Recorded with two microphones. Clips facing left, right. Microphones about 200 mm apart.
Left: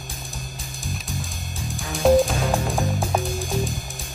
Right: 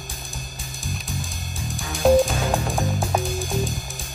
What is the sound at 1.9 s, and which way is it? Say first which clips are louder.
Music: even; centre (ahead or behind).